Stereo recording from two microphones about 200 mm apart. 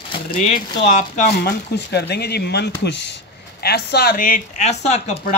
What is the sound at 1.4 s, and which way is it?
Speech, 55° left (ahead or behind).